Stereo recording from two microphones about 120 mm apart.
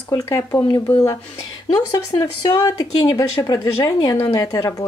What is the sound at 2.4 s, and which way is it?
Speech, 30° left (ahead or behind).